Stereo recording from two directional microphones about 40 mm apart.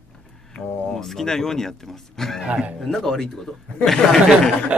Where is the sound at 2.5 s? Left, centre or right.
Right.